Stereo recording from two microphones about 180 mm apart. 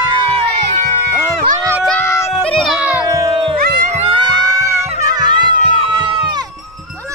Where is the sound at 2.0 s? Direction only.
15° left (ahead or behind).